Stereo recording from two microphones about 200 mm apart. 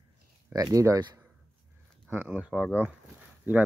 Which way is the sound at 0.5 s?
20° right (ahead or behind).